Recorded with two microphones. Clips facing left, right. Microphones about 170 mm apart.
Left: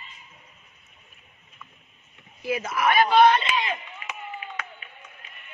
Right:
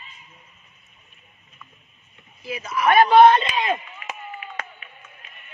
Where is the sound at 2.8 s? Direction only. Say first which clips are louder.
Right 5 dB; 50° right (ahead or behind).